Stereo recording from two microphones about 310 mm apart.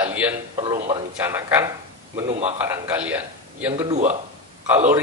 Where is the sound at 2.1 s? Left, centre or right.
Centre.